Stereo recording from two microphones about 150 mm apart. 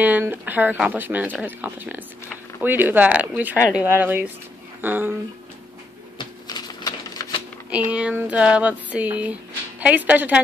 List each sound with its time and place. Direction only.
0.0 s speech: 10° right (ahead or behind)
6.1 s typewriter: 25° left (ahead or behind)
7.7 s speech: 10° right (ahead or behind)